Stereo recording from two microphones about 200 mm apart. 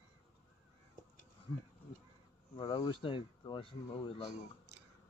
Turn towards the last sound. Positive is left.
turn(degrees=25)  # may be behind; listen again after turning